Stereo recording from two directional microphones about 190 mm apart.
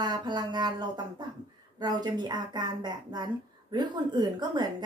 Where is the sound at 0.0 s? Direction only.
25° right (ahead or behind).